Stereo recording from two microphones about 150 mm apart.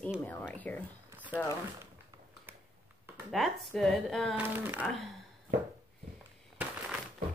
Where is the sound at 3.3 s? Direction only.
Centre (ahead or behind).